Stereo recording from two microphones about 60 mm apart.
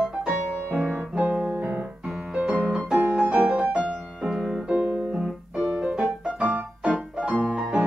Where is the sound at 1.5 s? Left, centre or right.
Right.